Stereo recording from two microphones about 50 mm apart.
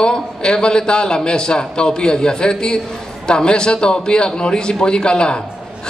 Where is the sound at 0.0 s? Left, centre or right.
Centre.